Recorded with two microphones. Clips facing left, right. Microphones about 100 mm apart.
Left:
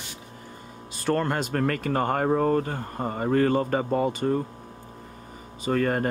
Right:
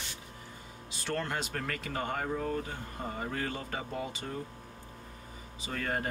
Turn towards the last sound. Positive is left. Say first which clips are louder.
# left 11 dB
turn(degrees=55)  # may be behind; listen again after turning